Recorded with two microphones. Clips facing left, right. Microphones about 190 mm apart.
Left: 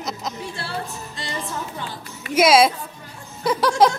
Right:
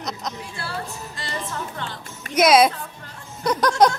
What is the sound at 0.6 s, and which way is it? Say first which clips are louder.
Music: left 1 dB; 25° left (ahead or behind).